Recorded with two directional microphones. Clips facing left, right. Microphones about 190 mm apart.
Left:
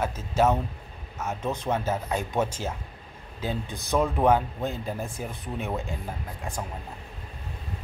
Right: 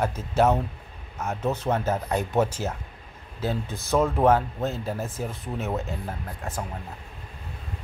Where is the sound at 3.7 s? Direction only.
Centre (ahead or behind).